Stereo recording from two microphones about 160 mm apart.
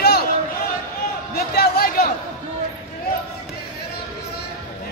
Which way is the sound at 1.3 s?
75° left (ahead or behind).